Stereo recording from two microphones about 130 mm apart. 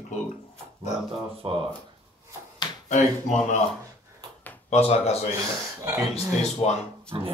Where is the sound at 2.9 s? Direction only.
65° left (ahead or behind).